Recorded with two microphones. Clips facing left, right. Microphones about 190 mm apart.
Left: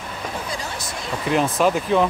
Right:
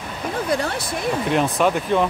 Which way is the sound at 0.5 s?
60° right (ahead or behind).